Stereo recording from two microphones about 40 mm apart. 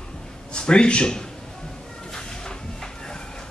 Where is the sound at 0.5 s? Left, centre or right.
Left.